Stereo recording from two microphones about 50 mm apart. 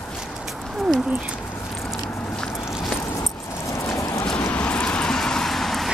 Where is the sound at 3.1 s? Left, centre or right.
Left.